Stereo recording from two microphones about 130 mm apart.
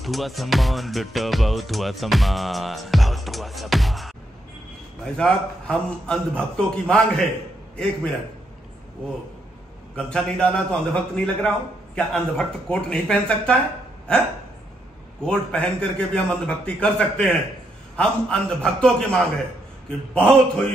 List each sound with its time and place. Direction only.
0.0 s music: centre (ahead or behind)
5.0 s a man's voice: 5° left (ahead or behind)
9.9 s music: 5° left (ahead or behind)
15.2 s a man's voice: 10° left (ahead or behind)
17.9 s music: 5° left (ahead or behind)